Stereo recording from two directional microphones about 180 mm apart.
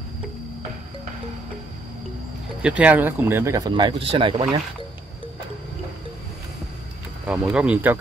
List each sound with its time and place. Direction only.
2.6 s speech: 5° right (ahead or behind); by 4.5 s 30° right (ahead or behind)
7.2 s speech: 5° right (ahead or behind)